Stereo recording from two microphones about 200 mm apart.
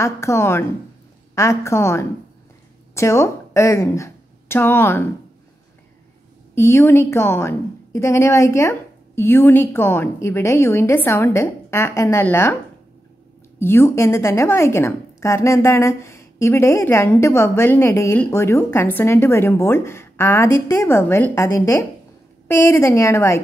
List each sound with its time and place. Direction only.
0.0 s a woman's voice: 15° left (ahead or behind)
6.5 s a woman's voice: 15° left (ahead or behind)
13.6 s a woman's voice: 10° left (ahead or behind)